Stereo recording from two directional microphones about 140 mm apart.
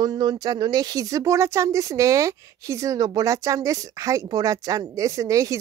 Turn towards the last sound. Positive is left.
turn(degrees=-25)  # may be behind; listen again after turning